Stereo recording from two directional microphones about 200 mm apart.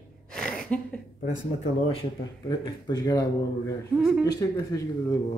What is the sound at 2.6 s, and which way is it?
A man's voice, 20° left (ahead or behind).